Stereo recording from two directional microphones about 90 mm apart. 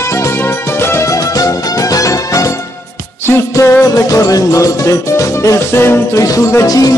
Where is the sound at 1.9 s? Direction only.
40° left (ahead or behind).